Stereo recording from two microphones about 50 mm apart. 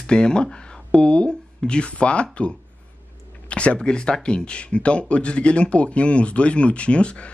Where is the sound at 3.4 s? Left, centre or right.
Left.